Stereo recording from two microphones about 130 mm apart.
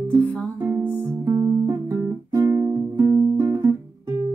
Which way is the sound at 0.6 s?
20° right (ahead or behind).